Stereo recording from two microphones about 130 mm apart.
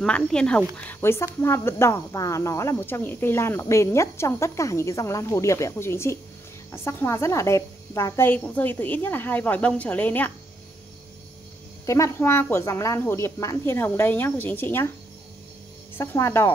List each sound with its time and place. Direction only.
0.0 s speech: 5° left (ahead or behind)
11.8 s speech: 25° left (ahead or behind)
16.0 s speech: 20° left (ahead or behind)